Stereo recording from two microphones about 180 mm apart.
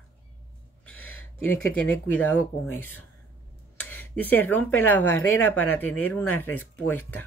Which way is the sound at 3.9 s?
10° left (ahead or behind).